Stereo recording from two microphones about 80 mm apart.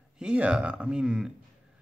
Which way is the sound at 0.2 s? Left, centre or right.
Centre.